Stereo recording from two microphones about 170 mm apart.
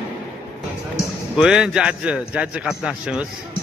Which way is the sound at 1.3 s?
5° right (ahead or behind).